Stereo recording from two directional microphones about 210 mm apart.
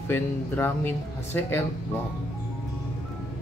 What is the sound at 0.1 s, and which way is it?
Speech, 10° left (ahead or behind).